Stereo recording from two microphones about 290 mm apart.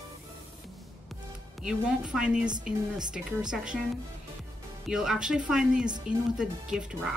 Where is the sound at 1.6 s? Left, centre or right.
Centre.